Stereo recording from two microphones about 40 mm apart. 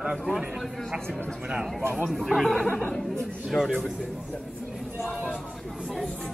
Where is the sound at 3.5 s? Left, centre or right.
Left.